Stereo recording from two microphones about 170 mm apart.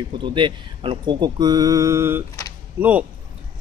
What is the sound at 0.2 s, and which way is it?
Speech, 30° right (ahead or behind).